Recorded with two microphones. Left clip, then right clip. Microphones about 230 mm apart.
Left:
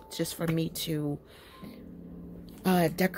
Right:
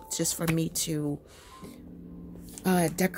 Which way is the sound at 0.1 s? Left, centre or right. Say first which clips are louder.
Right 2 dB; centre.